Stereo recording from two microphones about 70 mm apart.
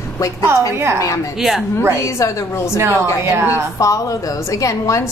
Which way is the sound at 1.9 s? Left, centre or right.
Left.